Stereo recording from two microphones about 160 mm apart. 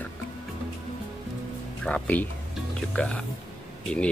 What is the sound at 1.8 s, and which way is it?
Speech, 10° left (ahead or behind).